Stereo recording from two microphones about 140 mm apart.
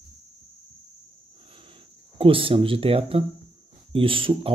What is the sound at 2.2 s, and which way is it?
Speech, 40° right (ahead or behind).